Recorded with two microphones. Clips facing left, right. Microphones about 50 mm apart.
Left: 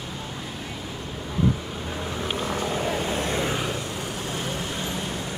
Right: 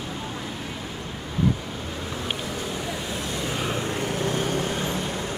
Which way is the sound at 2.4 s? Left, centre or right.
Left.